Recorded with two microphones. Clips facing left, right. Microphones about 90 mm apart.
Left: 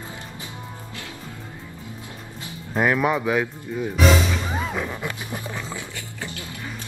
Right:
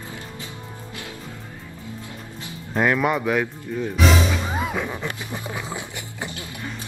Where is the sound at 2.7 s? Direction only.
5° left (ahead or behind).